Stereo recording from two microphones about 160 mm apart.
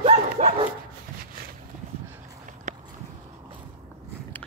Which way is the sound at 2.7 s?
45° right (ahead or behind).